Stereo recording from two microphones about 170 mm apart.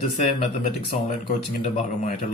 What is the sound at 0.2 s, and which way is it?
Speech, 45° left (ahead or behind).